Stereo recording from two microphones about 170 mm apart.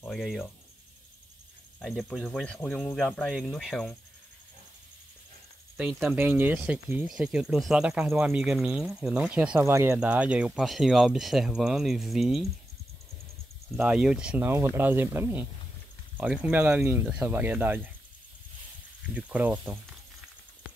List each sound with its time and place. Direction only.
0.0 s speech: centre (ahead or behind)
1.8 s speech: centre (ahead or behind)
6.0 s speech: 10° right (ahead or behind)
13.7 s speech: 5° right (ahead or behind)
19.1 s speech: 10° right (ahead or behind)